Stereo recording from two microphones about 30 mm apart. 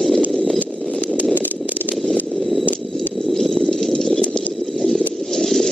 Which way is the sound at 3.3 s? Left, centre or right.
Centre.